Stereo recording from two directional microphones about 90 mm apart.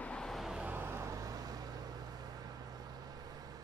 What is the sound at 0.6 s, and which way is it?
Vehicle, 25° right (ahead or behind).